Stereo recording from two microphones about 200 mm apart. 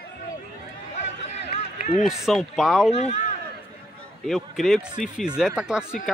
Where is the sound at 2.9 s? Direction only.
35° left (ahead or behind).